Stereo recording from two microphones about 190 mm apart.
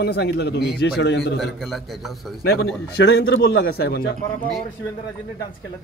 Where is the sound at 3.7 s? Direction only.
55° left (ahead or behind).